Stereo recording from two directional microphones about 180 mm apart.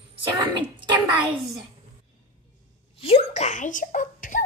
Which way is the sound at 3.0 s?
35° left (ahead or behind).